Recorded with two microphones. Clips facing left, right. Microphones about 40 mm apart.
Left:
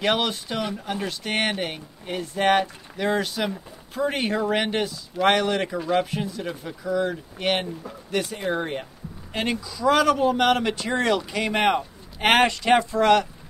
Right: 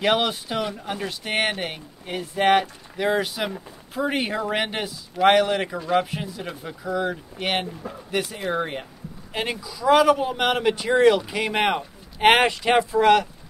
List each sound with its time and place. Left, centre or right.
0.0 s speech: centre